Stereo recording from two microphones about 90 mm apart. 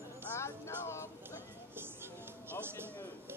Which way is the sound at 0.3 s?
30° left (ahead or behind).